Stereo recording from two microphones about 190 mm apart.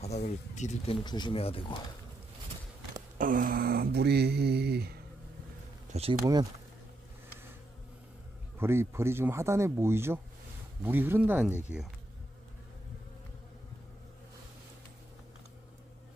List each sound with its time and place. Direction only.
0.0 s speech: 35° left (ahead or behind)
1.0 s speech: 25° left (ahead or behind)
3.2 s speech: 45° right (ahead or behind)
8.5 s speech: 10° right (ahead or behind)